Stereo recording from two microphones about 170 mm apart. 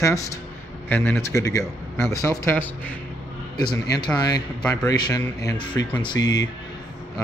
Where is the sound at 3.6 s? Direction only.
25° left (ahead or behind).